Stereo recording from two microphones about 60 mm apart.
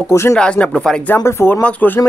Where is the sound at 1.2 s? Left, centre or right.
Left.